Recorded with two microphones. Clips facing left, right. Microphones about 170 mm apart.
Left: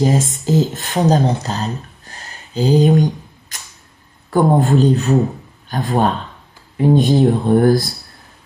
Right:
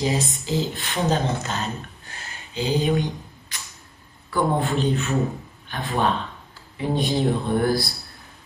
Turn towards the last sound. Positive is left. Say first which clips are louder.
# left 9 dB
turn(degrees=45)  # may be behind; listen again after turning